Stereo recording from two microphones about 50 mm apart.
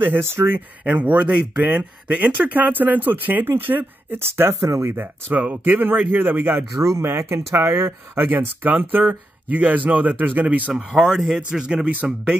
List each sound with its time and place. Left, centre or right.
0.2 s speech: right
0.8 s a man's voice: right
4.4 s speech: right
5.3 s speech: right
6.8 s speech: right
7.1 s speech: right
7.7 s speech: right
10.7 s speech: centre